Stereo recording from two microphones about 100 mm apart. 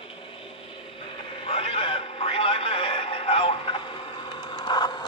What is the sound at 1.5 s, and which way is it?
Radio, 70° left (ahead or behind).